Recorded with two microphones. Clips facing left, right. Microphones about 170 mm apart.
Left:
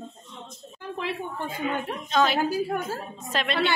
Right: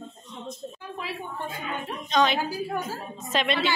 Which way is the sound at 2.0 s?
5° left (ahead or behind).